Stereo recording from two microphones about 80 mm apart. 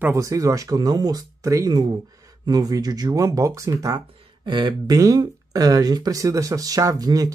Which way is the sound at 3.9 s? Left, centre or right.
Right.